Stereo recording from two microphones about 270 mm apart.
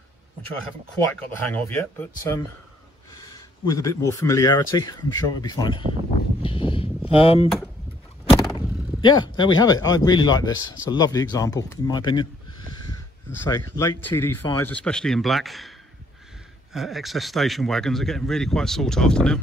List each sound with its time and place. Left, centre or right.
1.1 s speech: centre
3.6 s speech: centre
6.4 s a sound: centre
7.1 s speech: left
8.5 s speech: centre
13.3 s speech: centre
16.7 s speech: centre